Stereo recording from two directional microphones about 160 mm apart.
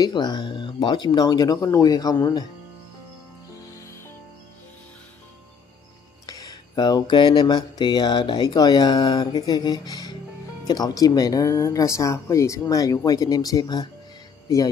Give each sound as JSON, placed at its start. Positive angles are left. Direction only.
{"t": 0.0, "sound": "speech", "side_deg": 25}
{"t": 6.2, "sound": "speech", "side_deg": 25}